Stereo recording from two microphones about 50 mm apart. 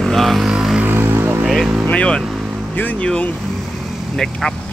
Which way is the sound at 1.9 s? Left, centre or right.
Left.